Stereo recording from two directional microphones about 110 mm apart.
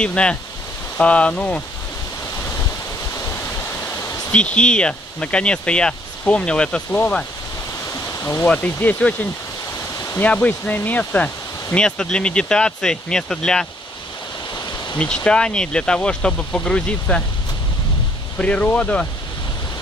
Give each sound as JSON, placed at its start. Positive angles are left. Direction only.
{"t": 0.0, "sound": "speech", "side_deg": 10}
{"t": 4.6, "sound": "speech", "side_deg": 10}
{"t": 8.2, "sound": "speech", "side_deg": 25}
{"t": 8.5, "sound": "speech", "side_deg": 15}
{"t": 15.0, "sound": "speech", "side_deg": 10}
{"t": 18.4, "sound": "speech", "side_deg": 10}